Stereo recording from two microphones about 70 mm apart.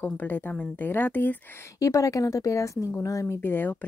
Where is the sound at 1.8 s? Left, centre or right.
Left.